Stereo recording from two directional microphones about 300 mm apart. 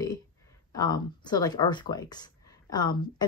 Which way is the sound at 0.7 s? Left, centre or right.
Centre.